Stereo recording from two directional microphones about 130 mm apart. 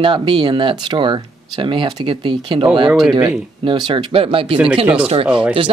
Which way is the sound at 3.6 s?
40° right (ahead or behind).